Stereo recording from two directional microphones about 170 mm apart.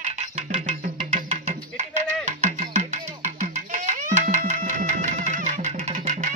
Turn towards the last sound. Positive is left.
turn(degrees=-50)  # may be behind; listen again after turning